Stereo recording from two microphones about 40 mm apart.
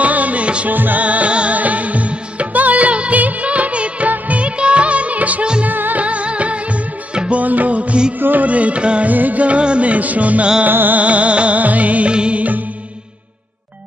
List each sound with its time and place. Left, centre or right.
0.0 s music: right
0.7 s music: right
1.0 s music: right
4.1 s music of bollywood: right
5.7 s music: right
6.0 s music: right
8.5 s music: right
9.1 s music: right
10.7 s music: right
11.0 s music: right
12.1 s music: right